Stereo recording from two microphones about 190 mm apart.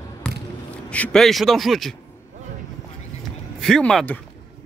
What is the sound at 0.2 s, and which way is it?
Basketball bounce, 5° left (ahead or behind).